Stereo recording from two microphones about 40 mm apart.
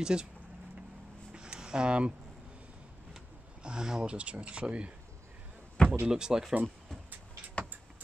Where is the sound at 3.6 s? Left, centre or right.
Centre.